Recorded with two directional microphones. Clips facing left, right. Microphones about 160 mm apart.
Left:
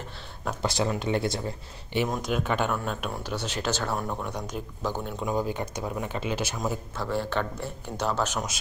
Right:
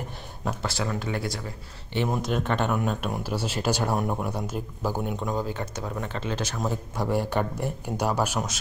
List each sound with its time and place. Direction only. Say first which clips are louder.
0.6 s speech: left 5 dB; 20° left (ahead or behind)
2.0 s speech: right 1 dB; 5° right (ahead or behind)
4.3 s speech: right 3 dB; 5° right (ahead or behind)
5.2 s speech: left 1 dB; 10° left (ahead or behind)
7.0 s speech: right 4 dB; 15° right (ahead or behind)